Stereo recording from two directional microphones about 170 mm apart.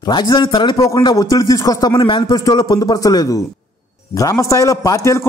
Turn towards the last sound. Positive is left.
turn(degrees=20)  # may be behind; listen again after turning